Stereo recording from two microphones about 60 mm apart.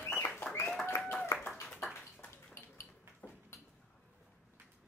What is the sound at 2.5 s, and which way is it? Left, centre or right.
Cutlery, left.